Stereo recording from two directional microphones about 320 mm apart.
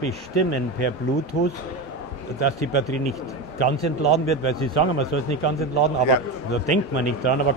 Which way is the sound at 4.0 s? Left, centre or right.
Centre.